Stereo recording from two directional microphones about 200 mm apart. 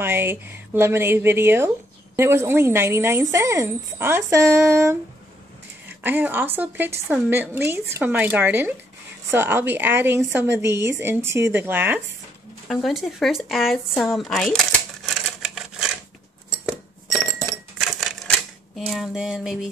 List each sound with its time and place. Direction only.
0.0 s a woman's voice: 10° right (ahead or behind)
6.0 s a woman's voice: 10° right (ahead or behind)
12.6 s speech: centre (ahead or behind)
15.0 s a sound: centre (ahead or behind)
17.7 s cash register: centre (ahead or behind)
18.8 s a sound: centre (ahead or behind)